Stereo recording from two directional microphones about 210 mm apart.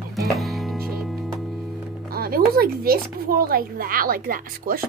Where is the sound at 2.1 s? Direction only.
45° right (ahead or behind).